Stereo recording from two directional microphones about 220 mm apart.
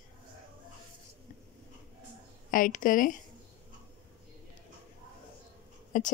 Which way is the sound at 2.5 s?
40° left (ahead or behind).